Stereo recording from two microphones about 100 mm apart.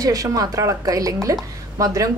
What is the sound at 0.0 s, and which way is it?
Speech, 35° right (ahead or behind).